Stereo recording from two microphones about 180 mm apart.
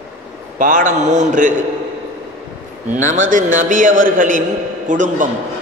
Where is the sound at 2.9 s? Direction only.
45° right (ahead or behind).